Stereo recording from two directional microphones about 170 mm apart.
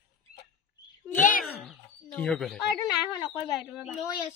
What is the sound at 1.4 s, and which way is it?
Chicken, centre (ahead or behind).